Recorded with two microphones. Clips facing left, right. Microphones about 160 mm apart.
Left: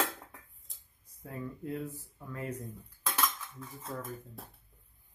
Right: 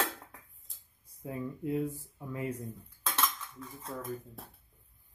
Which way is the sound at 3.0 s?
10° left (ahead or behind).